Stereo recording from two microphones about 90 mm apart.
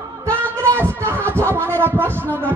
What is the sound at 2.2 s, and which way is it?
Speech, 25° right (ahead or behind).